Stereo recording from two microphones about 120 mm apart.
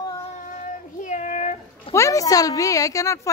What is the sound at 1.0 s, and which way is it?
Child singing, 85° left.